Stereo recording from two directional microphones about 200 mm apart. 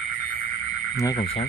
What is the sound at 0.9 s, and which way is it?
Speech, 20° left (ahead or behind).